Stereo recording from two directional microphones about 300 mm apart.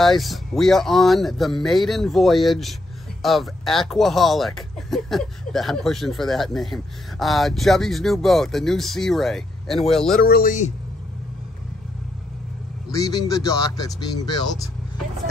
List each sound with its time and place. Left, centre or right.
0.0 s speech: centre
10.2 s speech: left
12.9 s speech: centre